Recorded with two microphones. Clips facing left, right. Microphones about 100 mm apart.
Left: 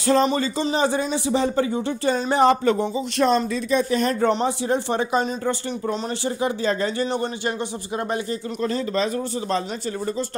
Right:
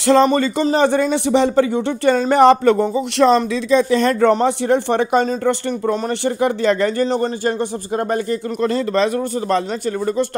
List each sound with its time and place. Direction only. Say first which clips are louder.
0.0 s a man's voice: right 6 dB; 85° right
0.3 s speech: right 6 dB; 55° right (ahead or behind); by 2.1 s 70° right (ahead or behind)
2.1 s speech: right 7 dB; 50° right (ahead or behind)
2.4 s speech: right 6 dB; 70° right (ahead or behind)
3.2 s speech: right 6 dB; 90° right; by 5.6 s 75° right (ahead or behind)
5.7 s speech: right 6 dB; 55° right (ahead or behind)
7.0 s speech: right 6 dB; 40° right (ahead or behind)
8.5 s a man's voice: right 6 dB; 70° right (ahead or behind)